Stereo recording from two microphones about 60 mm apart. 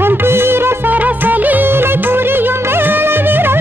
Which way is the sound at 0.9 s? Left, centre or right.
Right.